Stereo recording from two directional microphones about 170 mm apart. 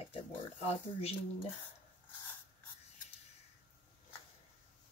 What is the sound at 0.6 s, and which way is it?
Speech, 35° left (ahead or behind).